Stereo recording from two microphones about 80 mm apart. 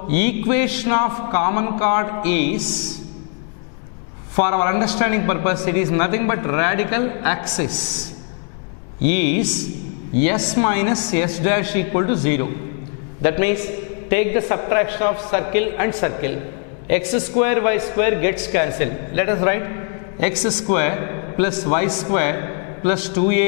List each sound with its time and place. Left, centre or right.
0.1 s a man's voice: centre
4.4 s a man's voice: centre
9.0 s a man's voice: centre